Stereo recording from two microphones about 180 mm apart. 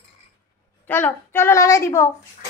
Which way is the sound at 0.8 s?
10° left (ahead or behind).